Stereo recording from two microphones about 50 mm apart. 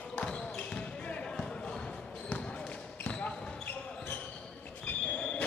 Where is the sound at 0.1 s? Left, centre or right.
Centre.